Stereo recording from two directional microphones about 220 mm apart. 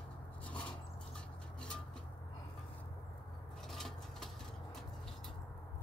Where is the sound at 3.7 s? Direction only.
Centre (ahead or behind).